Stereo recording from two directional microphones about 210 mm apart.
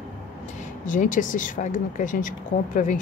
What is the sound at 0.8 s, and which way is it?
Speech, 40° left (ahead or behind).